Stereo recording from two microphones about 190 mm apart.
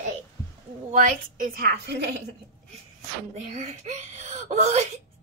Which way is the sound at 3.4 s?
40° right (ahead or behind).